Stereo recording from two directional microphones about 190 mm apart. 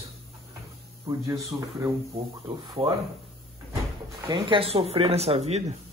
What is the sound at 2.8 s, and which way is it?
Speech, 30° right (ahead or behind).